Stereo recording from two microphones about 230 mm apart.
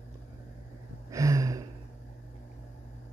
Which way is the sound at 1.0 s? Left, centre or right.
Centre.